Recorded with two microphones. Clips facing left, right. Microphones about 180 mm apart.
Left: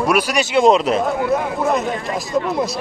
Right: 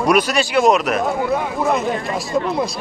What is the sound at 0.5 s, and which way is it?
Speech, 25° left (ahead or behind).